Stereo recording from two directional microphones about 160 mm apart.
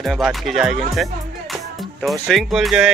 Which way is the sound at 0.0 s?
Centre (ahead or behind).